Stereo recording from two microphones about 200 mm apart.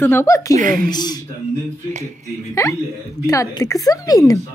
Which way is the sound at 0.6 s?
45° right (ahead or behind).